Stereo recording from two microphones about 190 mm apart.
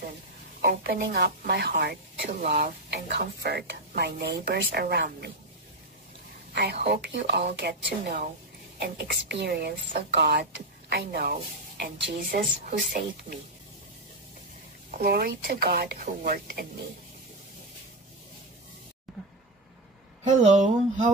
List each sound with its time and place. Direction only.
0.7 s speech: 60° right (ahead or behind)
6.5 s speech: 60° right (ahead or behind)
8.7 s speech: 60° right (ahead or behind)
14.9 s speech: 50° right (ahead or behind)
19.1 s a sound: centre (ahead or behind)
20.2 s speech: 40° right (ahead or behind)